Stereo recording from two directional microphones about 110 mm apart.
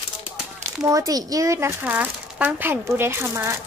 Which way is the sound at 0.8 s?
30° right (ahead or behind).